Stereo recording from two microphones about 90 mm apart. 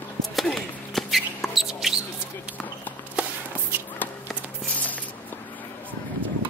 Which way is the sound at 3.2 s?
15° right (ahead or behind).